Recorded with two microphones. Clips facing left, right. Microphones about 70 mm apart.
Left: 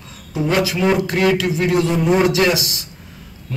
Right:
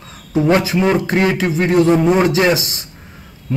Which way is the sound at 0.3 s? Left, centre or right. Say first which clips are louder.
Right 4 dB; right.